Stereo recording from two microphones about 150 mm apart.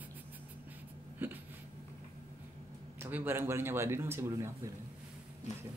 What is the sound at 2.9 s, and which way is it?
A man's voice, 15° right (ahead or behind).